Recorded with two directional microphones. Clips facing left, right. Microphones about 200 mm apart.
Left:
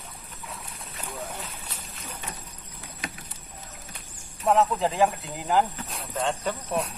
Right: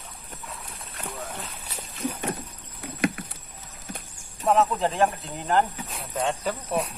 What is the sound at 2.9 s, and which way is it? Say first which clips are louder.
Rowboat: right 14 dB; 60° right (ahead or behind).